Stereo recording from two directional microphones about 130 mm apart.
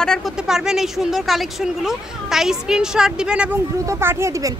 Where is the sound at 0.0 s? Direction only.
5° left (ahead or behind).